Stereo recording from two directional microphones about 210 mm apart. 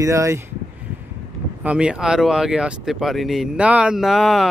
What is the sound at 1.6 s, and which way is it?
Speech, 5° right (ahead or behind).